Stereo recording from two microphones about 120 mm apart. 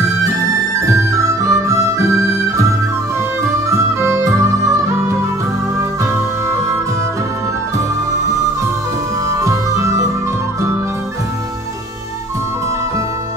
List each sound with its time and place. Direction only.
0.8 s music: 25° right (ahead or behind)
4.0 s music: 20° right (ahead or behind)
9.3 s music: 25° right (ahead or behind)